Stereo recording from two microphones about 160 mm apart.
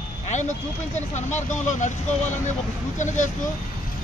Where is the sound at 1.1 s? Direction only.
50° left (ahead or behind).